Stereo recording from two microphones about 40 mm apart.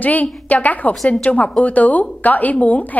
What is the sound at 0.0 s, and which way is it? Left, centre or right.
A woman's voice, left.